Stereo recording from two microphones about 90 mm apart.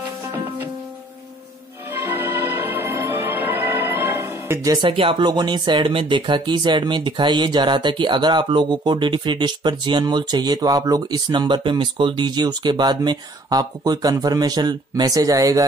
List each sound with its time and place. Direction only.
1.9 s music: 20° right (ahead or behind)
4.8 s speech: 90° right; by 15.6 s 40° right (ahead or behind)